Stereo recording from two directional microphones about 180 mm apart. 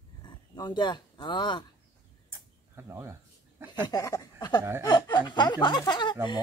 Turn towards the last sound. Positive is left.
turn(degrees=25)  # may be behind; listen again after turning